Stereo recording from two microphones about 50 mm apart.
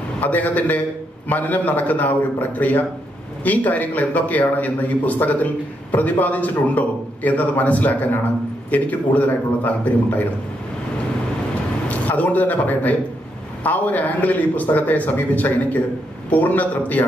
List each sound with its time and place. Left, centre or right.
0.2 s a man's voice: left
11.9 s a man's voice: left